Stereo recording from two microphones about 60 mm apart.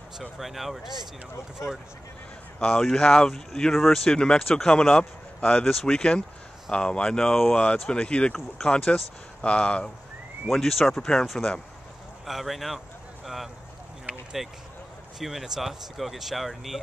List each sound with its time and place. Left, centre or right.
0.2 s speech: centre
2.6 s speech: centre
10.5 s speech: centre
12.3 s speech: centre